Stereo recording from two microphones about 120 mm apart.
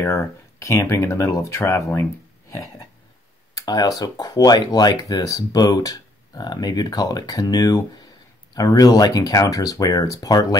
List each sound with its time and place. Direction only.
0.0 s speech: 25° left (ahead or behind)
3.5 s speech: 35° left (ahead or behind)